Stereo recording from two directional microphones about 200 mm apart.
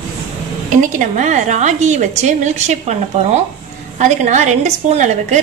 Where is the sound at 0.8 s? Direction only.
35° right (ahead or behind).